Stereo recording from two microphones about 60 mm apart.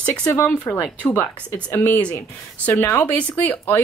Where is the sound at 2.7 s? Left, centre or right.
Left.